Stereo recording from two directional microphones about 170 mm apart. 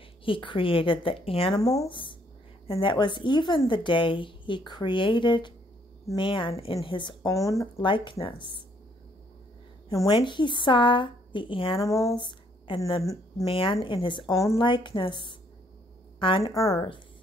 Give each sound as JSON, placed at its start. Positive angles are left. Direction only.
{"t": 0.2, "sound": "speech", "side_deg": 30}
{"t": 1.6, "sound": "speech", "side_deg": 20}
{"t": 7.7, "sound": "speech", "side_deg": 30}
{"t": 9.9, "sound": "speech", "side_deg": 30}
{"t": 13.0, "sound": "speech", "side_deg": 20}
{"t": 13.5, "sound": "speech", "side_deg": 30}